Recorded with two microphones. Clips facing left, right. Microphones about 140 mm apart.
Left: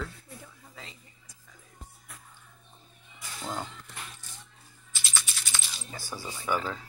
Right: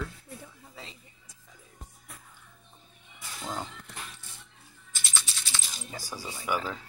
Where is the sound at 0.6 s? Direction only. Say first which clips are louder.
Right 1 dB; 20° right (ahead or behind).